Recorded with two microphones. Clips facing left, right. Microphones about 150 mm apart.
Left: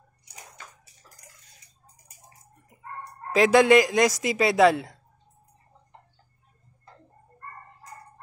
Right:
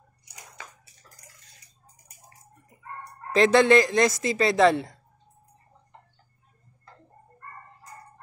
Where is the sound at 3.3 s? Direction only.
10° left (ahead or behind).